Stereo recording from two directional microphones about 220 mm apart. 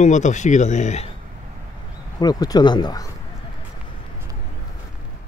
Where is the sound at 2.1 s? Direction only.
20° left (ahead or behind).